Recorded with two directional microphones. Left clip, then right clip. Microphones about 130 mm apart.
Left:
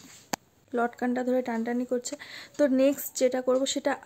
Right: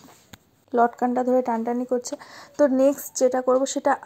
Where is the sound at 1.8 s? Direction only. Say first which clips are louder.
Right 5 dB; 20° left (ahead or behind).